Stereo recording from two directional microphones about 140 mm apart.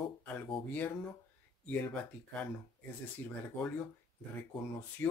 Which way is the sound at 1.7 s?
10° left (ahead or behind).